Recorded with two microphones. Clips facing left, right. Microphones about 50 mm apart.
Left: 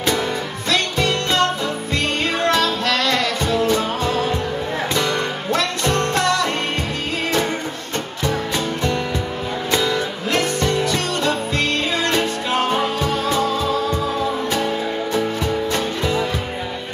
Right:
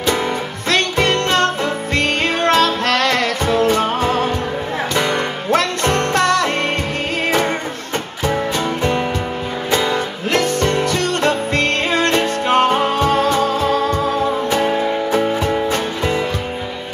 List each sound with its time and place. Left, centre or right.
0.7 s music: right
4.9 s music: right
5.5 s music: right
9.7 s music: right